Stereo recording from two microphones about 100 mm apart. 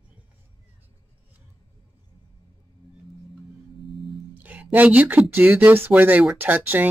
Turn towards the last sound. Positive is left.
turn(degrees=-20)  # may be behind; listen again after turning